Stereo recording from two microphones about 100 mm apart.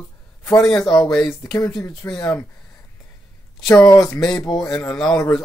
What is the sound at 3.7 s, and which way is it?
Speech, 35° left (ahead or behind).